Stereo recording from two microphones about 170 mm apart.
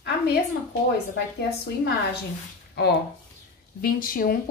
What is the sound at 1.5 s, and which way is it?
Speech, 70° left (ahead or behind).